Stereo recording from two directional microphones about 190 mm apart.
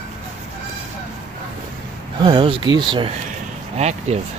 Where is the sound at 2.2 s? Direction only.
25° right (ahead or behind).